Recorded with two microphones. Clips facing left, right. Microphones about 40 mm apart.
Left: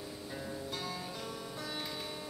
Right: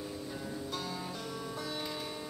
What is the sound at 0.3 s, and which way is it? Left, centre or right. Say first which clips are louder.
Music: left 1 dB; centre.